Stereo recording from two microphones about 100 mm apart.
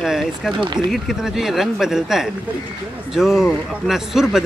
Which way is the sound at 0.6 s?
50° right (ahead or behind).